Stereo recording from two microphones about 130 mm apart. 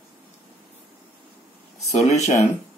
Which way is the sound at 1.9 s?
60° left (ahead or behind).